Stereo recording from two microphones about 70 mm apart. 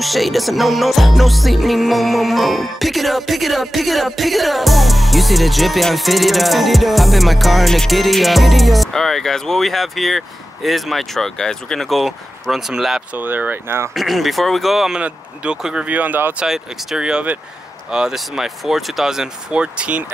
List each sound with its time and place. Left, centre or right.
0.0 s music: centre
13.1 s speech: right
13.9 s music: centre
15.0 s speech: centre
15.9 s speech: right
16.4 s speech: centre